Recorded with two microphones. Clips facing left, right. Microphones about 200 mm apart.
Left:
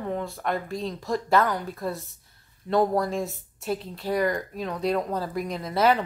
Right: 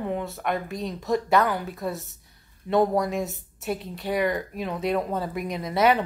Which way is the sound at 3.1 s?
Centre (ahead or behind).